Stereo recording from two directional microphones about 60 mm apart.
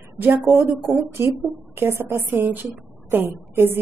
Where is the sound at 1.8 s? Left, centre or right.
Right.